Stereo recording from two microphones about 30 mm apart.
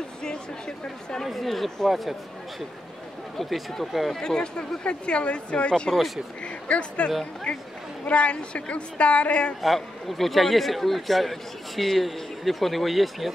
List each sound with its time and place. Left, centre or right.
0.2 s speech: left
1.2 s a man's voice: centre
3.3 s a man's voice: centre
4.2 s a woman's voice: left
5.9 s speech: centre
6.4 s a woman's voice: left
9.6 s a man's voice: centre